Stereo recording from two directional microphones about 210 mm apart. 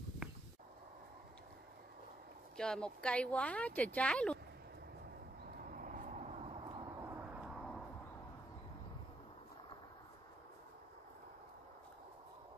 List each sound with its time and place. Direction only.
2.5 s speech: 5° left (ahead or behind)
5.6 s vehicle: 40° right (ahead or behind)
7.0 s vehicle: 10° right (ahead or behind)